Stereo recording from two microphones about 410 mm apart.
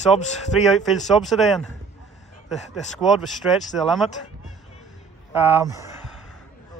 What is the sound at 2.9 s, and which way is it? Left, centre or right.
Speech, centre.